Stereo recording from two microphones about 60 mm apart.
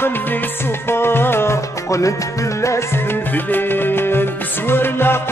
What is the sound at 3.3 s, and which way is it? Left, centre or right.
Music, left.